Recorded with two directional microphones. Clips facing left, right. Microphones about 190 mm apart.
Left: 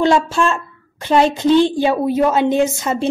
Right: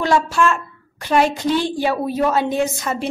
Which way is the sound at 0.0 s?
25° left (ahead or behind).